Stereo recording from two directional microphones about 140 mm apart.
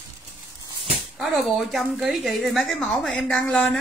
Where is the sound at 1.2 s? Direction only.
Centre (ahead or behind).